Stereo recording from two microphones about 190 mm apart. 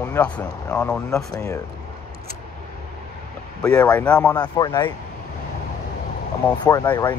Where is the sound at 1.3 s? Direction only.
15° left (ahead or behind).